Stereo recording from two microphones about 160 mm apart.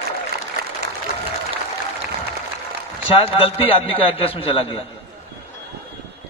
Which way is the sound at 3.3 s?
35° left (ahead or behind).